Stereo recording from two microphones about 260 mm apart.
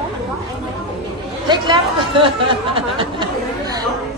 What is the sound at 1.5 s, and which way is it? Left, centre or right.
Speech, centre.